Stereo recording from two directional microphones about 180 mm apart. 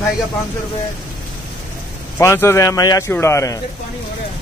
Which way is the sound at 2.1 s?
15° left (ahead or behind).